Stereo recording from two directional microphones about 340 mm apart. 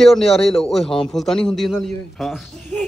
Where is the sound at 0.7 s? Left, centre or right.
Centre.